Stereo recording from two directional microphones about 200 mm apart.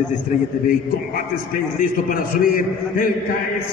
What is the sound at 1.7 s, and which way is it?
Mantra, 45° left (ahead or behind).